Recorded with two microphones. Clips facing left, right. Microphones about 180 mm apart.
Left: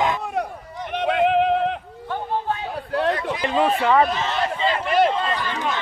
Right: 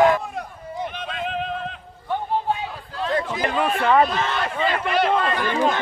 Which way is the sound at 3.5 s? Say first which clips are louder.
Left 5 dB; 25° left (ahead or behind).